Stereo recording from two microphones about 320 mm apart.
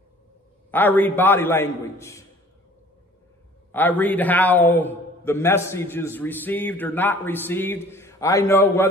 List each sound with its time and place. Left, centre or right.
0.7 s a man's voice: centre
3.7 s a man's voice: centre